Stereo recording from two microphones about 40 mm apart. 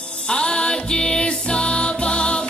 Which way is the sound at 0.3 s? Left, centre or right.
Left.